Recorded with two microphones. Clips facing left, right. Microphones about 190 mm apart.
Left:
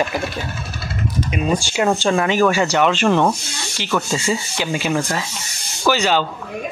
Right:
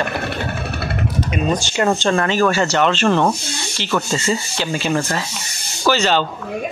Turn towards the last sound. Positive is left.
turn(degrees=10)  # may be behind; listen again after turning